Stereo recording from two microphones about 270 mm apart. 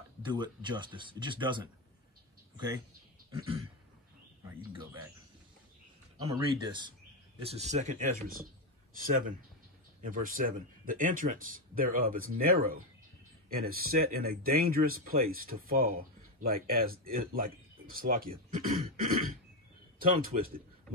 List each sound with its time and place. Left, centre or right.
0.2 s speech: centre
2.5 s speech: centre
6.2 s speech: centre; by 20.6 s right